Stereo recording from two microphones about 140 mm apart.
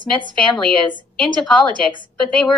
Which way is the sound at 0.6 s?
10° left (ahead or behind).